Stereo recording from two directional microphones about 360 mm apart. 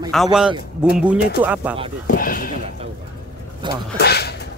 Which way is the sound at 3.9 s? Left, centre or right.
Left.